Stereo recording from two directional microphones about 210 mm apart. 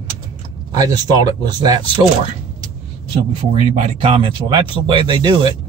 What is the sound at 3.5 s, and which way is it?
Speech, 30° right (ahead or behind).